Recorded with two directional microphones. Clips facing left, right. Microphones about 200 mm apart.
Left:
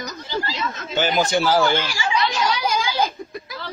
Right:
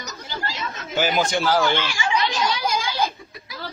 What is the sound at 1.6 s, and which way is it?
Speech, 45° left (ahead or behind).